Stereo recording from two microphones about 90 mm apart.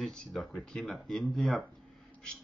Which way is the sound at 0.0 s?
Centre (ahead or behind).